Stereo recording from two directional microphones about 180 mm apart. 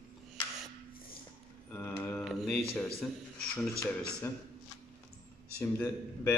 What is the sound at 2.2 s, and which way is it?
Speech, centre (ahead or behind).